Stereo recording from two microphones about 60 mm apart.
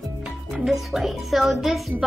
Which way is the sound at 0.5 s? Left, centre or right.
Centre.